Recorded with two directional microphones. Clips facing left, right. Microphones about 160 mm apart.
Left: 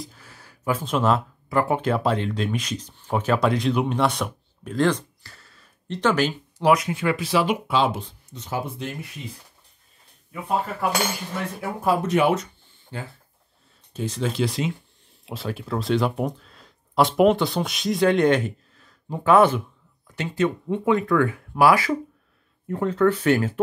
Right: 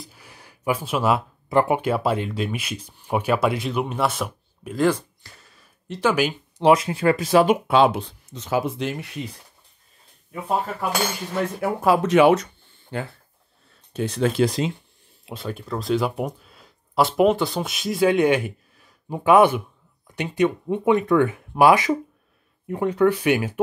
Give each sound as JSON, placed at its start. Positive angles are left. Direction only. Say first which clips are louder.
{"t": 0.0, "sound": "a sound", "louder": "left 4 dB", "side_deg": -10}
{"t": 1.5, "sound": "speech", "louder": "right 3 dB", "side_deg": -25}
{"t": 1.8, "sound": "speech", "louder": "even", "side_deg": -10}
{"t": 6.6, "sound": "speech", "louder": "right 3 dB", "side_deg": -25}
{"t": 11.8, "sound": "speech", "louder": "right 4 dB", "side_deg": -90}
{"t": 12.9, "sound": "speech", "louder": "right 5 dB", "side_deg": -60}
{"t": 15.2, "sound": "speech", "louder": "left 1 dB", "side_deg": 0}